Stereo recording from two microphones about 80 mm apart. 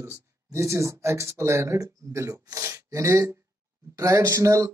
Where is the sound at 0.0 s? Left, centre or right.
Right.